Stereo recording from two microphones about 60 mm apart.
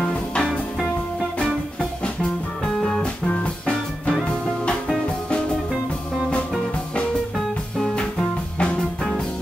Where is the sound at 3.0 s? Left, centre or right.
Centre.